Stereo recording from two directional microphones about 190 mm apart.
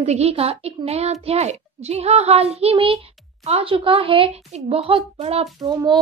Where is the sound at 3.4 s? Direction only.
30° right (ahead or behind).